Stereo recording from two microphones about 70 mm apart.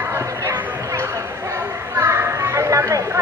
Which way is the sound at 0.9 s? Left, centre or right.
Right.